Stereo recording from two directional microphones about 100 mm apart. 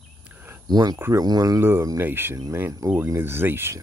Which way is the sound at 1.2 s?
40° right (ahead or behind).